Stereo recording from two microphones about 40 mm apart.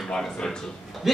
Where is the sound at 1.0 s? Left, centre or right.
Centre.